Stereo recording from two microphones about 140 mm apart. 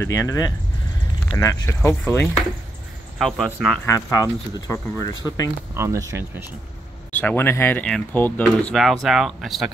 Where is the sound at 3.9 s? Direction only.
25° left (ahead or behind).